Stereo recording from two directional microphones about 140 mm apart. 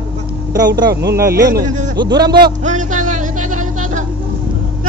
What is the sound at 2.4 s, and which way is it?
Music, 60° right (ahead or behind).